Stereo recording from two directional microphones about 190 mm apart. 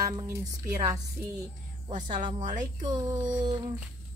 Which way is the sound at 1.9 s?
40° right (ahead or behind).